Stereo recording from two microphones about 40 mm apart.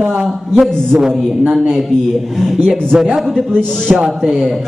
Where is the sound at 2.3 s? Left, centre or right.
Centre.